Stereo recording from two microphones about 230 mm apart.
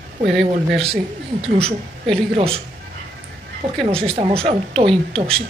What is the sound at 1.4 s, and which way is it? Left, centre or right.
Speech, right.